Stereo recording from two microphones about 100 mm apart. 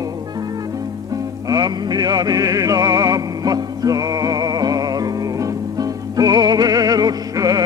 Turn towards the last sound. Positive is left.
turn(degrees=-40)  # may be behind; listen again after turning